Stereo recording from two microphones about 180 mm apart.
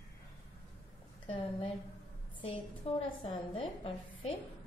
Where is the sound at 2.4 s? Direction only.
30° left (ahead or behind).